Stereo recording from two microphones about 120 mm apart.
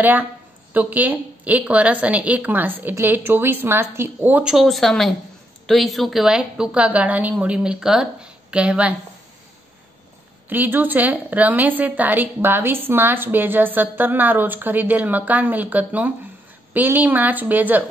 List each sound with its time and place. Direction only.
0.0 s a woman's voice: 15° right (ahead or behind)
10.5 s a woman's voice: 15° right (ahead or behind)